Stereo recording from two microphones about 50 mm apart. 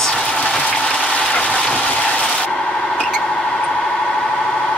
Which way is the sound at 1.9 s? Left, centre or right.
Left.